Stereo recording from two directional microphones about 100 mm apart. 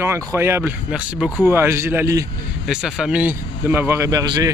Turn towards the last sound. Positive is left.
turn(degrees=-35)  # may be behind; listen again after turning